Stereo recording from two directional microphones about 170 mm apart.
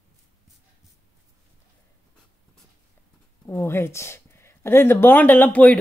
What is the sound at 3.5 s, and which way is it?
Speech, 15° left (ahead or behind).